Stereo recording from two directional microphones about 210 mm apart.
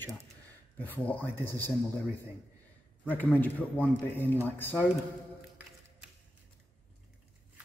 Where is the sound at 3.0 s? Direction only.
10° left (ahead or behind).